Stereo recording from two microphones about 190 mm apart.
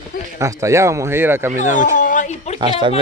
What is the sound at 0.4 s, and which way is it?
A man's voice, 15° right (ahead or behind).